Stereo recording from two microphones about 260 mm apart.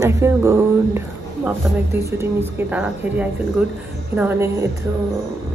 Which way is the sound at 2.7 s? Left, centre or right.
Centre.